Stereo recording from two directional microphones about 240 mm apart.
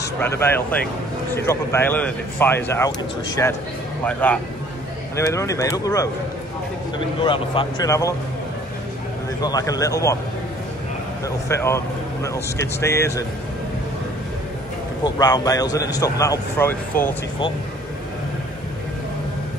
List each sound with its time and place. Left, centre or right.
0.2 s speech: centre
7.2 s speech: left
9.4 s speech: centre
11.2 s speech: centre
15.1 s speech: centre